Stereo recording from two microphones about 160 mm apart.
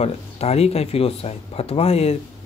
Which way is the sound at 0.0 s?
40° left (ahead or behind).